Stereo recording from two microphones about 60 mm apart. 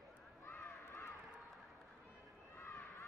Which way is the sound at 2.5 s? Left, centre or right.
Left.